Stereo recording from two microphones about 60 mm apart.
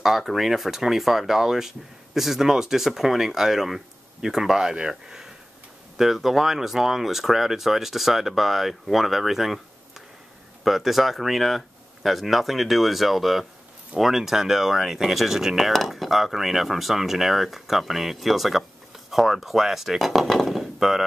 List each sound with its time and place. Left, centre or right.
0.0 s speech: centre